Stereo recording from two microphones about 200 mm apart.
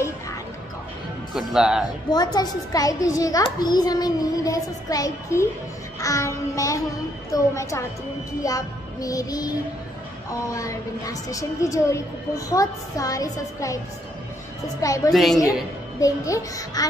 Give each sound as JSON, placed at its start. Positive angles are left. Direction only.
{"t": 1.3, "sound": "speech", "side_deg": -5}
{"t": 2.0, "sound": "a child's voice", "side_deg": 20}
{"t": 10.5, "sound": "a child's voice", "side_deg": 15}
{"t": 14.8, "sound": "a child's voice", "side_deg": 15}